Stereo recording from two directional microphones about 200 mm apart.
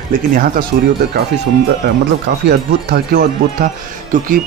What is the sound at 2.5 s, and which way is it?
Speech, 50° right (ahead or behind).